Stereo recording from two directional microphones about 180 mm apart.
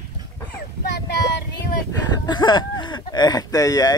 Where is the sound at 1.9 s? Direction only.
25° left (ahead or behind).